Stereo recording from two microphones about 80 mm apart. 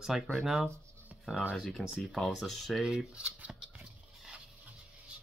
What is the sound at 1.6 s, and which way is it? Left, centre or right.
Speech, centre.